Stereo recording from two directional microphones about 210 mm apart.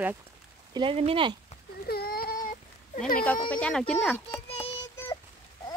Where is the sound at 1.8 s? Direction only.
45° left (ahead or behind).